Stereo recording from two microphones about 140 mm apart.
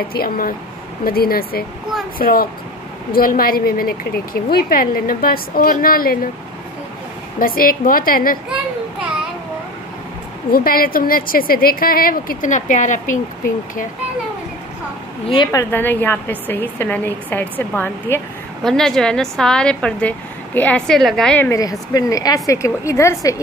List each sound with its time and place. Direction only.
0.1 s a woman's voice: 90° left
7.3 s a woman's voice: 90° left
10.5 s a woman's voice: 90° left; by 13.2 s 65° left (ahead or behind)
15.5 s a woman's voice: 15° left (ahead or behind)
18.6 s a woman's voice: 5° left (ahead or behind)
21.4 s a woman's voice: 25° left (ahead or behind)